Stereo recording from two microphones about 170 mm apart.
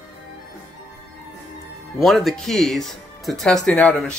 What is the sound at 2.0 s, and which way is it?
Speech, centre (ahead or behind).